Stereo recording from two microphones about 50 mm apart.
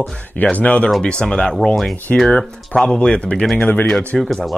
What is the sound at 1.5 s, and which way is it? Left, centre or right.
Speech, centre.